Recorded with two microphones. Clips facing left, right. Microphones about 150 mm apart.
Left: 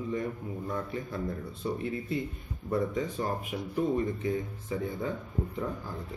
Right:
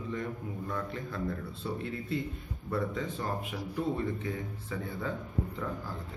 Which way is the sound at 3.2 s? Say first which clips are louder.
Left 3 dB; 15° left (ahead or behind).